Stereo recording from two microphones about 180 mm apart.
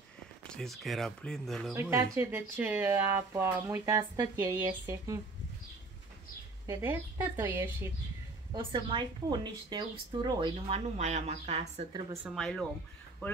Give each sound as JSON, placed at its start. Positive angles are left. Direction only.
{"t": 0.5, "sound": "speech", "side_deg": 5}
{"t": 1.7, "sound": "speech", "side_deg": -15}
{"t": 6.6, "sound": "speech", "side_deg": -15}
{"t": 8.5, "sound": "a woman's voice", "side_deg": -25}
{"t": 11.0, "sound": "a woman's voice", "side_deg": -40}
{"t": 12.4, "sound": "speech", "side_deg": 5}